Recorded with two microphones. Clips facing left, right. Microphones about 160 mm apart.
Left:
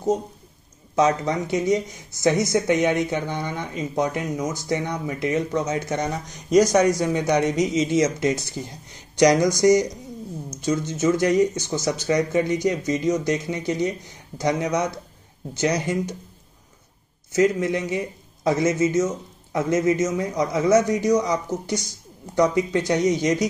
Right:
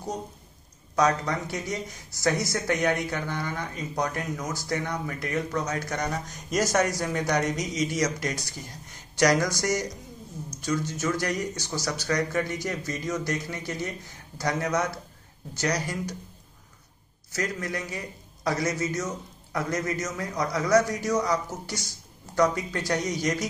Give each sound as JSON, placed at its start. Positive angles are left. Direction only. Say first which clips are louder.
{"t": 0.9, "sound": "a man's voice", "louder": "left 4 dB", "side_deg": 20}
{"t": 17.3, "sound": "a man's voice", "louder": "left 11 dB", "side_deg": 20}